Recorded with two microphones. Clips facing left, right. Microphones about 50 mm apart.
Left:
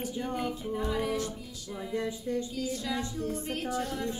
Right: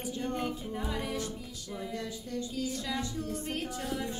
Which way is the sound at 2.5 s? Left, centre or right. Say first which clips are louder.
Left 2 dB; centre.